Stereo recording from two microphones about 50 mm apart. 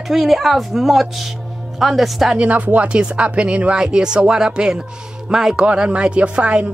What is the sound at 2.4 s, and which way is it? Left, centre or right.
Speech, right.